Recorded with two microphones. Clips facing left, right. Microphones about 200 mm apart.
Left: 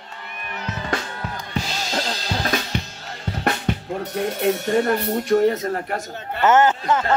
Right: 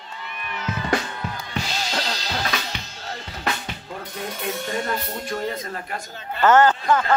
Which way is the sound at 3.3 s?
50° left (ahead or behind).